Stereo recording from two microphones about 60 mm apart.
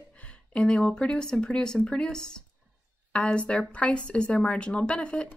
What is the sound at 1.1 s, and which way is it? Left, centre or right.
A woman's voice, centre.